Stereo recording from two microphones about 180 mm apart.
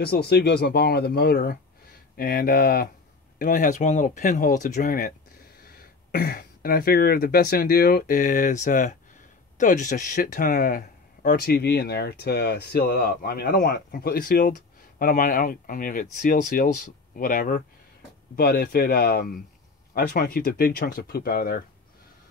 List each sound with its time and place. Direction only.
0.0 s speech: 60° left (ahead or behind)